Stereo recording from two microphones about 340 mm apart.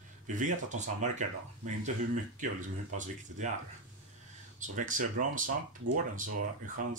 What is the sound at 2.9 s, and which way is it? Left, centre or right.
Speech, right.